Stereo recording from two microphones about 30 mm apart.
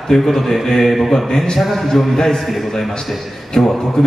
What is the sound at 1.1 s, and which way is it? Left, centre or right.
A man's voice, centre.